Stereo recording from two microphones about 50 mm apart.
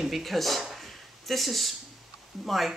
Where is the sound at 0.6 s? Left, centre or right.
Centre.